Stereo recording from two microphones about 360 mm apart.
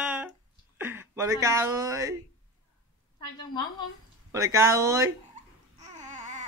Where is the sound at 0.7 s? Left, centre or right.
Centre.